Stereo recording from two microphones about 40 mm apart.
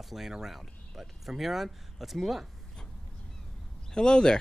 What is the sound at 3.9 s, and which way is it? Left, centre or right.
Speech, centre.